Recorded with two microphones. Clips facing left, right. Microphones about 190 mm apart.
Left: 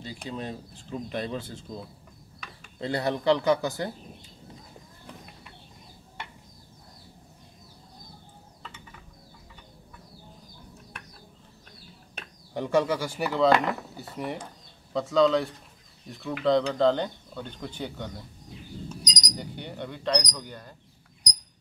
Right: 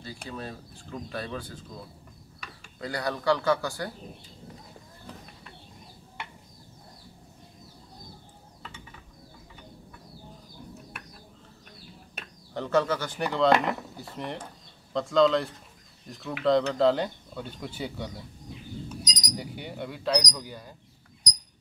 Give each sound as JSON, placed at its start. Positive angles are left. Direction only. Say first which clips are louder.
{"t": 0.0, "sound": "speech", "louder": "left 3 dB", "side_deg": 20}
{"t": 2.8, "sound": "speech", "louder": "left 3 dB", "side_deg": 25}
{"t": 12.5, "sound": "speech", "louder": "left 1 dB", "side_deg": 15}
{"t": 19.0, "sound": "a sound", "louder": "right 1 dB", "side_deg": -5}